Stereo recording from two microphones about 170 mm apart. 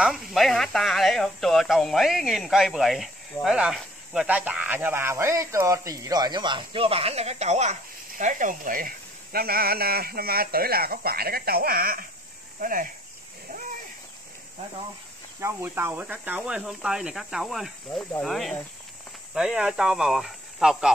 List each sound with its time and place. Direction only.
0.0 s speech: centre (ahead or behind); by 12.8 s 55° right (ahead or behind)
15.4 s speech: 15° right (ahead or behind)